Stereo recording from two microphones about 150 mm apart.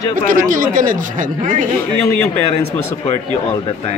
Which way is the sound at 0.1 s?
65° right (ahead or behind).